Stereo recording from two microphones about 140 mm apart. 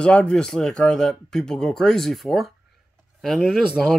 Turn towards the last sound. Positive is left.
turn(degrees=-5)  # may be behind; listen again after turning